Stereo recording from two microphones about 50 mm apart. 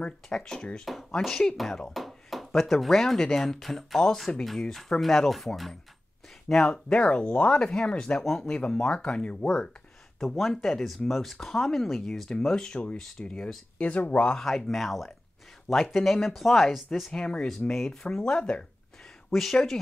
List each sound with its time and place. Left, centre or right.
0.0 s speech: centre
1.6 s speech: centre
6.5 s speech: centre
10.2 s speech: centre; by 14.4 s left
14.4 s speech: centre
17.1 s speech: centre
19.3 s speech: centre